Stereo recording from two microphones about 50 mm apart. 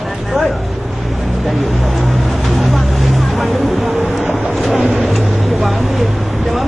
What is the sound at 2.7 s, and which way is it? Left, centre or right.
Vehicle, centre.